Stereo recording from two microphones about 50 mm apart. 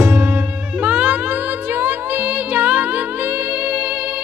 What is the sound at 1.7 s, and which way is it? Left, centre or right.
Music, right.